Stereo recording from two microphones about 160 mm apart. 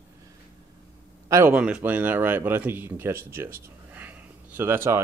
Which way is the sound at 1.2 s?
15° right (ahead or behind).